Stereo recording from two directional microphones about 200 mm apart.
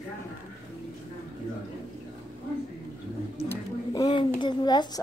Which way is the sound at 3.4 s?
20° left (ahead or behind).